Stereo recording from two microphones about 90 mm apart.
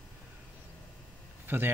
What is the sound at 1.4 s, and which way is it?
Speech, 25° right (ahead or behind).